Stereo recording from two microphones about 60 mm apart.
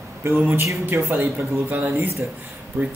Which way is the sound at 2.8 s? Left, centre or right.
Right.